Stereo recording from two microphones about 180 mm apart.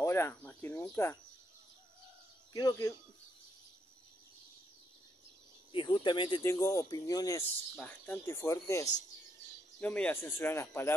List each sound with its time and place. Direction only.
0.0 s speech: 15° left (ahead or behind)
2.5 s speech: 20° left (ahead or behind)
5.7 s speech: 25° left (ahead or behind)
7.7 s speech: 5° left (ahead or behind)